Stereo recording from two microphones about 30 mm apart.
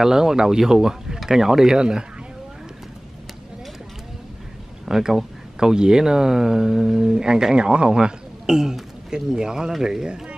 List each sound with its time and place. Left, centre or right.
0.0 s speech: centre
1.8 s speech: right
4.8 s speech: centre
7.5 s speech: right
8.0 s speech: centre